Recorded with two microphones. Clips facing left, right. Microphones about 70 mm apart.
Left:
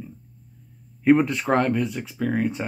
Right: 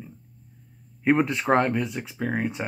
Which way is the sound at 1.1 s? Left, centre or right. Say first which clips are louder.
Left 3 dB; centre.